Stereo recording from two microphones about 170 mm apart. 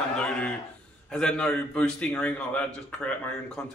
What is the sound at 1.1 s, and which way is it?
A man's voice, 5° left (ahead or behind).